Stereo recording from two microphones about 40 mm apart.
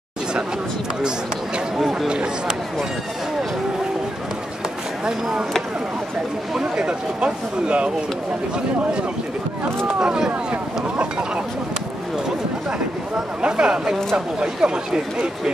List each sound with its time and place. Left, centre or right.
1.8 s speech: centre
2.0 s speech: right
6.6 s speech: right
9.9 s speech: centre
10.5 s speech: right
13.4 s speech: right